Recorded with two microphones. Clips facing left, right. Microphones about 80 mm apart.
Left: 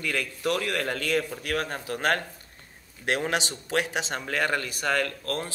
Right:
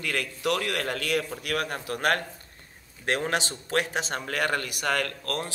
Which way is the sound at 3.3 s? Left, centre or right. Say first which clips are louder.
Even; left.